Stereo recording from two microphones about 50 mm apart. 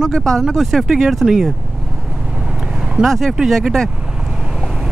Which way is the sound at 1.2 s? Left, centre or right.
Centre.